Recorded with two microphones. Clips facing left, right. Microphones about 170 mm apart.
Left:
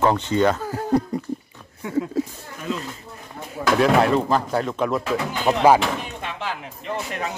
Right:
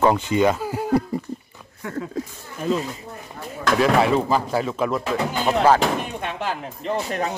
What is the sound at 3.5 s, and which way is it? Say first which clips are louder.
Speech: left 1 dB; centre (ahead or behind).